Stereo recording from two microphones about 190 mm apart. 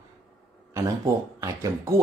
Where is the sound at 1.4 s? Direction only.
20° right (ahead or behind).